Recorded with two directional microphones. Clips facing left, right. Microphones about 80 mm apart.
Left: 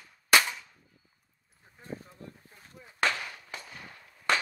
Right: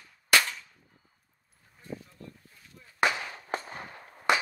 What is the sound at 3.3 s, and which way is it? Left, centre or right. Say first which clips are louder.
Firecracker: right 9 dB; right.